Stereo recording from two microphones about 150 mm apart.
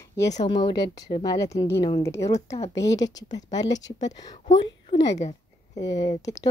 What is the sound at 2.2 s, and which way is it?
Speech, 45° left (ahead or behind).